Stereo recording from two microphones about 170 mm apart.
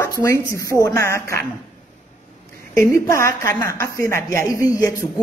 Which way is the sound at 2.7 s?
15° left (ahead or behind).